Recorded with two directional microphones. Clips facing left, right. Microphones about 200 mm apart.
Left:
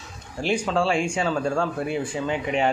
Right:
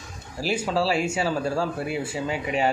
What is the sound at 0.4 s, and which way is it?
Speech, 5° right (ahead or behind).